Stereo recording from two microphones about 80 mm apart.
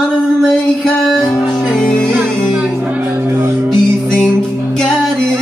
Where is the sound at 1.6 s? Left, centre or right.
Centre.